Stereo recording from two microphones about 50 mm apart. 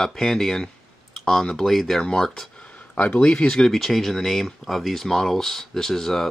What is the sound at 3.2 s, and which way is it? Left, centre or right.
Speech, left.